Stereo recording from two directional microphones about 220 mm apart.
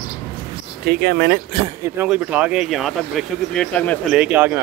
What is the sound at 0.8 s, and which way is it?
Speech, 45° right (ahead or behind).